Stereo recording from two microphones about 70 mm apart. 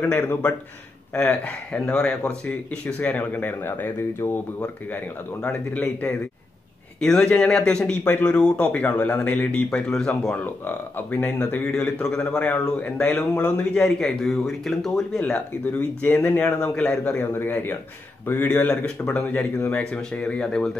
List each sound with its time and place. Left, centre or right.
0.0 s speech: left
5.4 s speech: centre
7.0 s speech: centre
9.7 s speech: centre
10.4 s speech: left; by 14.9 s centre
15.1 s speech: centre
17.2 s speech: left; by 20.7 s centre